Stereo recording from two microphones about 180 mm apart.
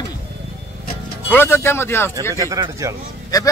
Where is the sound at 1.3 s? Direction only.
10° left (ahead or behind).